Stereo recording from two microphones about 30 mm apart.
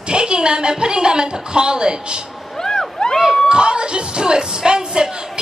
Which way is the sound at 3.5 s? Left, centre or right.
Right.